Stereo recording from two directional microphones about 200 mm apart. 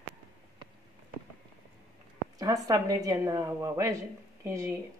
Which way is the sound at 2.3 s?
20° right (ahead or behind).